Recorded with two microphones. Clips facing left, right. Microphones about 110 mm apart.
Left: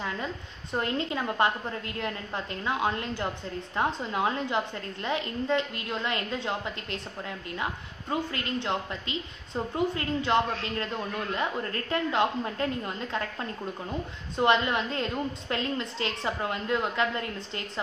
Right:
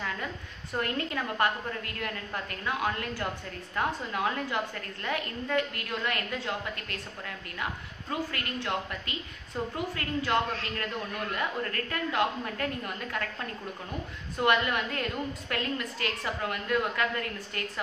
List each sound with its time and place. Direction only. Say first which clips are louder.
0.7 s a woman's voice: left 2 dB; 20° left (ahead or behind)